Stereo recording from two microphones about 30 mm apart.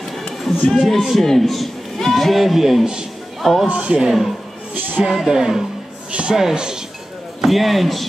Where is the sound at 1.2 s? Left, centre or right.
Centre.